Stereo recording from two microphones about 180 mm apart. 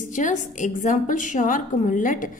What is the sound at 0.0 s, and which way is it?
A woman's voice, 45° left (ahead or behind).